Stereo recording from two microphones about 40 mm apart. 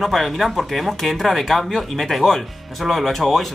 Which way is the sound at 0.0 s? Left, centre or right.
Centre.